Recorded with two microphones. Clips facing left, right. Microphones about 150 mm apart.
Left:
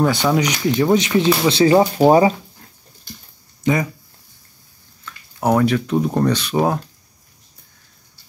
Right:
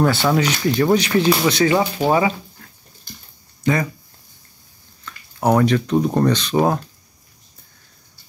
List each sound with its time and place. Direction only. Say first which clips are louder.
0.0 s speech: even; 10° left (ahead or behind); by 2.3 s 35° left (ahead or behind)
3.6 s speech: left 1 dB; 15° left (ahead or behind)
5.0 s speech: right 1 dB; 5° left (ahead or behind)